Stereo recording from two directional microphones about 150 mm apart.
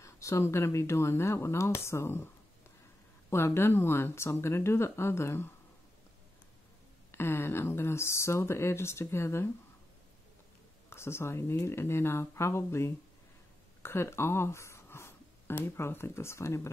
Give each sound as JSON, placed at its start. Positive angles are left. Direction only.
{"t": 0.0, "sound": "speech", "side_deg": 20}
{"t": 3.3, "sound": "speech", "side_deg": 15}
{"t": 7.1, "sound": "speech", "side_deg": 15}
{"t": 10.9, "sound": "speech", "side_deg": 15}